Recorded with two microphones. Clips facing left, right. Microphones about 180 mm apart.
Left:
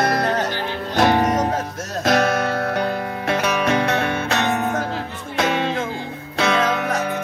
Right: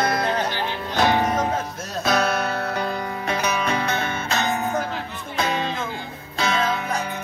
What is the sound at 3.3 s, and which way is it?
Music, 70° left (ahead or behind).